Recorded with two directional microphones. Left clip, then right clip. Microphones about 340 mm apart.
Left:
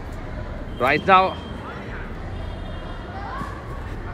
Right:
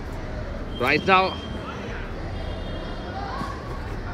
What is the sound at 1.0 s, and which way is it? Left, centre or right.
Speech, centre.